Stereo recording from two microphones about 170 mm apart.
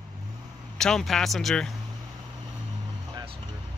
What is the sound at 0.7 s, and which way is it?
Speech, 5° left (ahead or behind).